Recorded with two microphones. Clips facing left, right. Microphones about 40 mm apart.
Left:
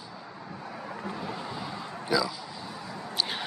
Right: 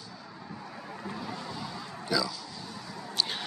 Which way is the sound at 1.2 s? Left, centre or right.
Centre.